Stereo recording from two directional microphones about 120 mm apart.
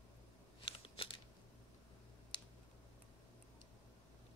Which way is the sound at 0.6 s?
45° left (ahead or behind).